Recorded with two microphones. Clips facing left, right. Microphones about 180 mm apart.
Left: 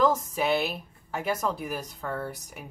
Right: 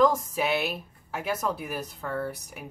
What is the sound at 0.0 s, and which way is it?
Speech, centre (ahead or behind).